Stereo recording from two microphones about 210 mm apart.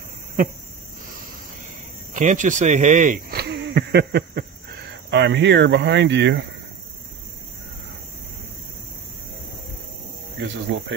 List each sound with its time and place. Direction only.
2.1 s speech: 35° right (ahead or behind); by 6.4 s 60° right (ahead or behind)